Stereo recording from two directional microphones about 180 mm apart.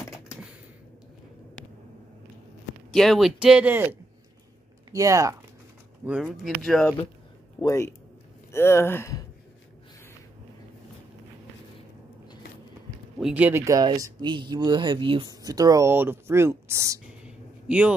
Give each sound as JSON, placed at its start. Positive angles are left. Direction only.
{"t": 2.9, "sound": "speech", "side_deg": 0}
{"t": 6.0, "sound": "speech", "side_deg": -5}
{"t": 13.2, "sound": "speech", "side_deg": -5}
{"t": 17.2, "sound": "a sound", "side_deg": -5}